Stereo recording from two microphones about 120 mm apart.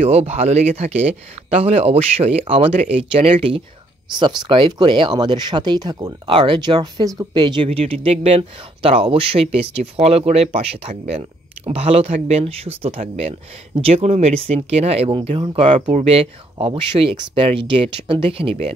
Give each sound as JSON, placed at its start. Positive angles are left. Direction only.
{"t": 0.0, "sound": "speech", "side_deg": -60}
{"t": 6.3, "sound": "speech", "side_deg": -45}
{"t": 15.9, "sound": "speech", "side_deg": -65}